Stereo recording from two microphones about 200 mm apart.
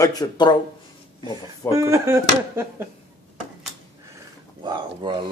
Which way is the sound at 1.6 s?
15° right (ahead or behind).